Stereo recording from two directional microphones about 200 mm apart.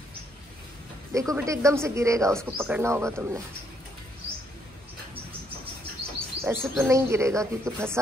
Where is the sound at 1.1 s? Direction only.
15° right (ahead or behind).